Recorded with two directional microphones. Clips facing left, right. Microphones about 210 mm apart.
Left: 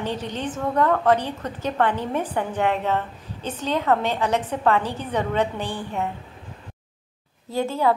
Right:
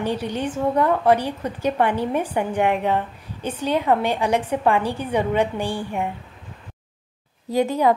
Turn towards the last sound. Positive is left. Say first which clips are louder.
# right 3 dB
turn(degrees=-15)  # may be behind; listen again after turning